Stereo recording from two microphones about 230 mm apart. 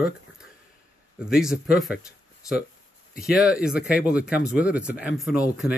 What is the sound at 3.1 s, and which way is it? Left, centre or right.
Speech, centre.